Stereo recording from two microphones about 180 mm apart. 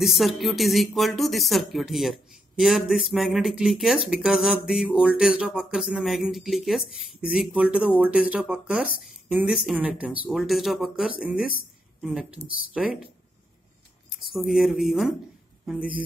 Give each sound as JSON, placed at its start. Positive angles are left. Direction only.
{"t": 0.0, "sound": "speech", "side_deg": 0}
{"t": 14.1, "sound": "speech", "side_deg": 0}